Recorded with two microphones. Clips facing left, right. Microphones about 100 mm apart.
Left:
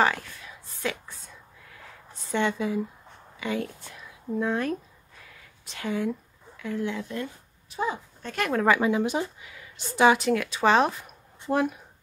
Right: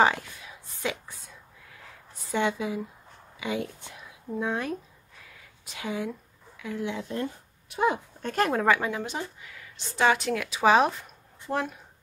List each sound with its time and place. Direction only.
0.0 s speech: 15° right (ahead or behind)
2.3 s speech: 10° right (ahead or behind)
7.7 s speech: 65° right (ahead or behind)
8.3 s speech: 35° right (ahead or behind)
8.5 s speech: 5° left (ahead or behind)
11.5 s speech: 25° left (ahead or behind)